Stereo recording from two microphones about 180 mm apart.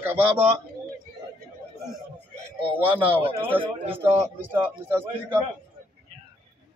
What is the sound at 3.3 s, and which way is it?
Speech, 30° right (ahead or behind).